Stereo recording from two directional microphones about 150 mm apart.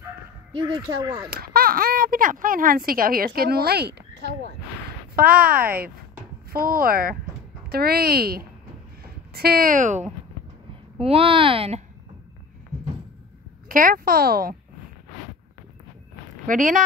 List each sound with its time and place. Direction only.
0.5 s speech: 35° right (ahead or behind)
1.3 s speech: 80° right
3.3 s speech: 90° right
5.1 s speech: 80° right
7.7 s speech: 90° right; by 10.0 s 55° right (ahead or behind)
11.0 s a child's voice: 40° right (ahead or behind)
13.7 s speech: 65° right (ahead or behind); by 14.5 s 85° right
16.4 s speech: 60° right (ahead or behind)